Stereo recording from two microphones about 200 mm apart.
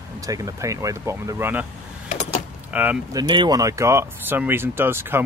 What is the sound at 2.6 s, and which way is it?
Speech, 5° right (ahead or behind).